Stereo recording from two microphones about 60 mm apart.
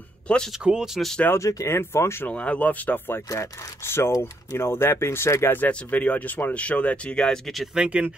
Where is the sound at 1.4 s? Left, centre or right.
Left.